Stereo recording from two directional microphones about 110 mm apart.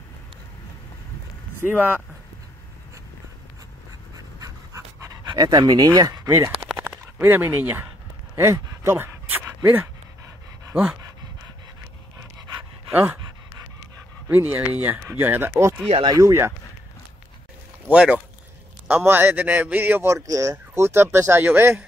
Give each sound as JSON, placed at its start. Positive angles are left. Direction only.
{"t": 1.6, "sound": "speech", "side_deg": -15}
{"t": 4.4, "sound": "pant", "side_deg": -30}
{"t": 5.2, "sound": "speech", "side_deg": -40}
{"t": 6.2, "sound": "a sound", "side_deg": -25}
{"t": 10.7, "sound": "dog", "side_deg": -10}
{"t": 12.9, "sound": "speech", "side_deg": -15}
{"t": 14.3, "sound": "speech", "side_deg": -15}
{"t": 16.0, "sound": "a man's voice", "side_deg": -35}
{"t": 17.8, "sound": "a man's voice", "side_deg": -10}